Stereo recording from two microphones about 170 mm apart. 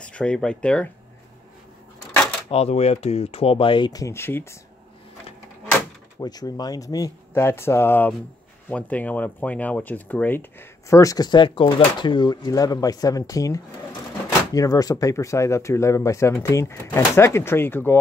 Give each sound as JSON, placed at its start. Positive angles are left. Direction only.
{"t": 0.0, "sound": "speech", "side_deg": 5}
{"t": 2.5, "sound": "speech", "side_deg": 35}
{"t": 6.1, "sound": "speech", "side_deg": 20}